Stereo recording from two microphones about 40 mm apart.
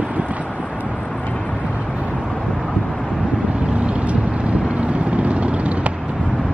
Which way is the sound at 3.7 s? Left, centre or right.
Right.